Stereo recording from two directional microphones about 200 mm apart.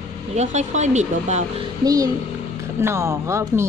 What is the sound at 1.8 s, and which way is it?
Speech, 20° right (ahead or behind).